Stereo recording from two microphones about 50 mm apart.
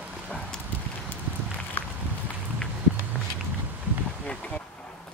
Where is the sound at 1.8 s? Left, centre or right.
Left.